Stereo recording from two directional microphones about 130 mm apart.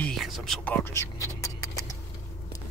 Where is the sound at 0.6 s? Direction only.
15° left (ahead or behind).